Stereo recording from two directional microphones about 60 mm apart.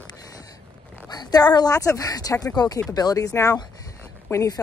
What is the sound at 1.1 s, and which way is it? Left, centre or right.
Speech, left.